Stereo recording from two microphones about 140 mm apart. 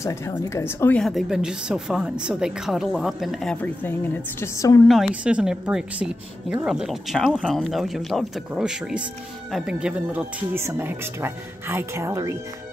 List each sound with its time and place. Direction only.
0.0 s a woman's voice: 20° left (ahead or behind)
0.9 s speech: centre (ahead or behind)
3.6 s a woman's voice: 15° left (ahead or behind)
4.8 s speech: centre (ahead or behind); by 12.4 s 20° right (ahead or behind)